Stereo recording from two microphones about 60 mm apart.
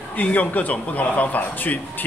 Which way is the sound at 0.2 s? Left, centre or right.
Left.